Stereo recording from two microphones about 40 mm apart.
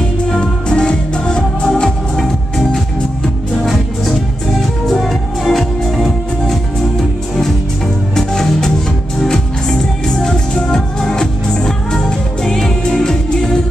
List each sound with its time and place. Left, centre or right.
0.3 s music: left
4.6 s music: centre
8.1 s music: centre